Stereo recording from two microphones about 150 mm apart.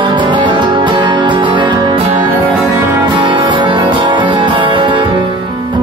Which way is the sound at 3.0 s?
30° right (ahead or behind).